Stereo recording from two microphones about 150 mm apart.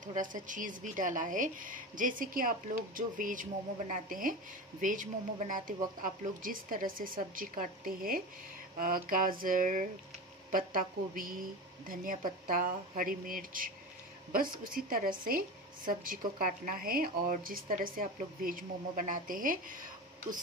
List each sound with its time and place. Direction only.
0.0 s a woman's voice: 60° right (ahead or behind)